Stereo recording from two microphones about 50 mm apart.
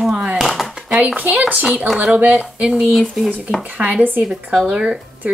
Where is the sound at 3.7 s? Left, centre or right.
Right.